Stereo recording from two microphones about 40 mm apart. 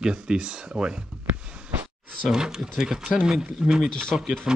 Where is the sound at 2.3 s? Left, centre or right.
Centre.